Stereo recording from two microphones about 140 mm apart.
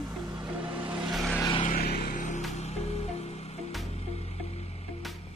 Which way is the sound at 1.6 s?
90° left.